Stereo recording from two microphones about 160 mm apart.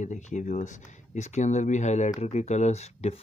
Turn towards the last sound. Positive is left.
turn(degrees=45)  # may be behind; listen again after turning